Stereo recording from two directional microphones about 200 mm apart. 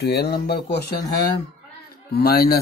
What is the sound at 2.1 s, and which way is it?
Speech, 50° left (ahead or behind).